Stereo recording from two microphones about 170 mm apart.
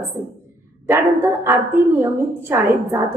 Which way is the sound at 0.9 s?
15° right (ahead or behind).